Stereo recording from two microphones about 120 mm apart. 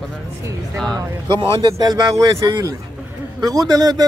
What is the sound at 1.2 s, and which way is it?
A man's voice, 40° right (ahead or behind).